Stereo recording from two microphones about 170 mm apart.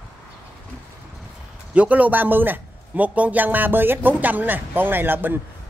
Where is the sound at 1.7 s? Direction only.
10° right (ahead or behind).